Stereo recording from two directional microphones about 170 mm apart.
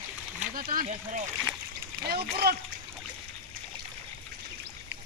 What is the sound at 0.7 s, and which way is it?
Speech, 55° right (ahead or behind).